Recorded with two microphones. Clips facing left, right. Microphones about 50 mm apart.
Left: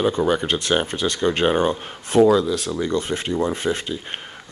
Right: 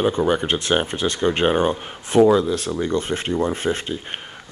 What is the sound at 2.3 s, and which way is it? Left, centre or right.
Speech, right.